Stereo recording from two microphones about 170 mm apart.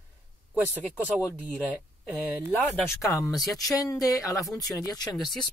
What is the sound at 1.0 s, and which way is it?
Speech, 5° right (ahead or behind).